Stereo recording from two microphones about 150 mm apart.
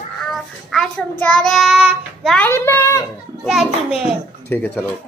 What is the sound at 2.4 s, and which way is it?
Speech, 15° left (ahead or behind).